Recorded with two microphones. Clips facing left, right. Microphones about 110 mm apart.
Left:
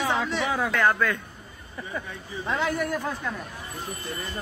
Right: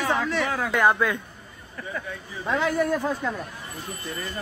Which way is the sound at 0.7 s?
15° right (ahead or behind).